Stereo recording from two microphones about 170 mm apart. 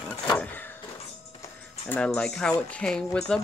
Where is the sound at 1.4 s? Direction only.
10° left (ahead or behind).